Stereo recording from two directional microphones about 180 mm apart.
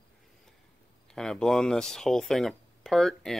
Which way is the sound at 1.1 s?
5° left (ahead or behind).